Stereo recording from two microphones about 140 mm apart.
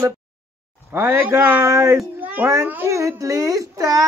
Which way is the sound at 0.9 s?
20° right (ahead or behind).